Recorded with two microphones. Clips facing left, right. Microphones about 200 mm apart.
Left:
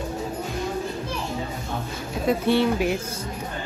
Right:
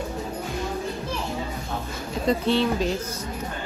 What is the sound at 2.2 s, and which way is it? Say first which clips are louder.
Speech: left 1 dB; 15° left (ahead or behind).